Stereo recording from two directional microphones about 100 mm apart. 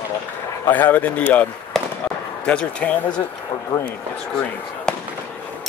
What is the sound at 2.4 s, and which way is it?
Speech, 10° left (ahead or behind).